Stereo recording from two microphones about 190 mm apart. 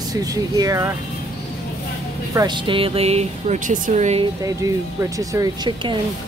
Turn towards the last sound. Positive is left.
turn(degrees=-25)  # may be behind; listen again after turning